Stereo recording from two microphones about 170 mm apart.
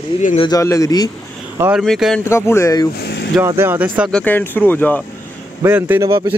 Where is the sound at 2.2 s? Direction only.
15° left (ahead or behind).